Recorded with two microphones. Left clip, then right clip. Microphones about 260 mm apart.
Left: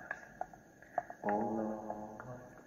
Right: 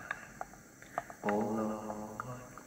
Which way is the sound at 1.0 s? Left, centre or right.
Right.